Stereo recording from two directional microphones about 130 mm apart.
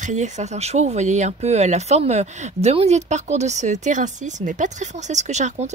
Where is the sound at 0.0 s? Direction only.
65° right (ahead or behind).